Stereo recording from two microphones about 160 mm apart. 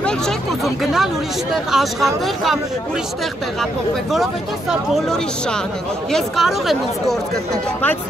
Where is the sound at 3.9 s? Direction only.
Centre (ahead or behind).